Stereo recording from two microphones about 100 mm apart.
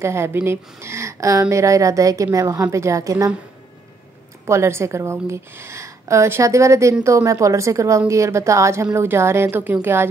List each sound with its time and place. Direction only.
0.0 s a woman's voice: 25° right (ahead or behind)
4.5 s a woman's voice: 25° right (ahead or behind)